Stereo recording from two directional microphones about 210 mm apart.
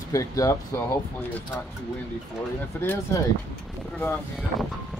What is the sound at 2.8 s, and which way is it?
Speech, 10° left (ahead or behind).